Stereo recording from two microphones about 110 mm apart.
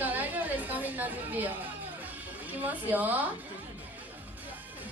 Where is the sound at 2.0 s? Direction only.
15° right (ahead or behind).